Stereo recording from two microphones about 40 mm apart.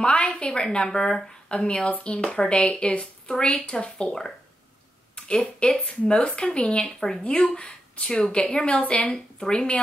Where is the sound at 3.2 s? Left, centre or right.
Centre.